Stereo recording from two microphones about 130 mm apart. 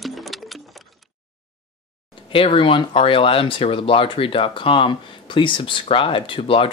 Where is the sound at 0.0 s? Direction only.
Centre (ahead or behind).